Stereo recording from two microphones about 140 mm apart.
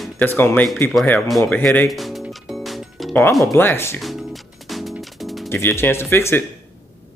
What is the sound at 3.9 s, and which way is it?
Music, centre (ahead or behind).